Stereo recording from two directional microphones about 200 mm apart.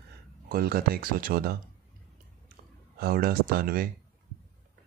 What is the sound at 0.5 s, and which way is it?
Speech, 50° right (ahead or behind).